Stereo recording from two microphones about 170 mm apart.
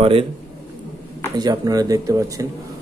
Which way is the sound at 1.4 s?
25° right (ahead or behind).